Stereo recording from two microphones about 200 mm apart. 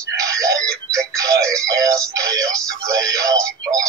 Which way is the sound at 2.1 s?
15° right (ahead or behind).